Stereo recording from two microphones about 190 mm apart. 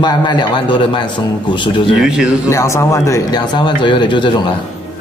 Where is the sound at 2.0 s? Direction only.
5° right (ahead or behind).